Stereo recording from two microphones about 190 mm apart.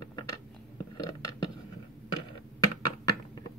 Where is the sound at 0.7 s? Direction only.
20° left (ahead or behind).